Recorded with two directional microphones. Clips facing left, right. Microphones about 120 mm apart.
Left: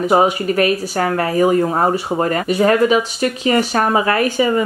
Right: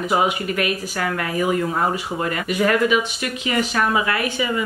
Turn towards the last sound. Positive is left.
turn(degrees=40)  # may be behind; listen again after turning